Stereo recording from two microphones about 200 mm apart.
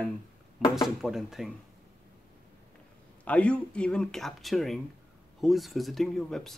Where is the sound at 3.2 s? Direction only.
5° left (ahead or behind).